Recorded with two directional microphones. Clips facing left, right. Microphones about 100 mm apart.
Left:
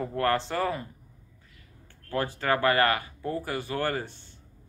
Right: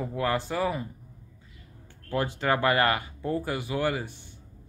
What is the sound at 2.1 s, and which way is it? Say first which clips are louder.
Speech: right 1 dB; 20° right (ahead or behind).